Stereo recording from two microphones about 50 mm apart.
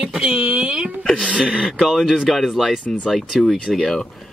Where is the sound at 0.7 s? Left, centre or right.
Centre.